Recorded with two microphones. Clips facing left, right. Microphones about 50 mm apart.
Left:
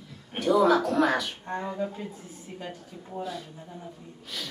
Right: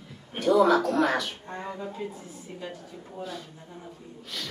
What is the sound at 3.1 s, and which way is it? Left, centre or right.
Speech, centre.